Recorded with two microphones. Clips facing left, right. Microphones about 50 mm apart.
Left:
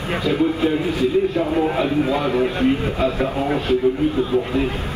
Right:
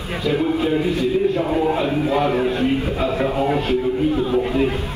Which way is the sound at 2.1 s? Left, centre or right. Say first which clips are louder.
Right 2 dB; right.